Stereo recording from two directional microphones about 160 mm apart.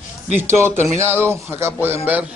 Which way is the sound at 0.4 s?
15° right (ahead or behind).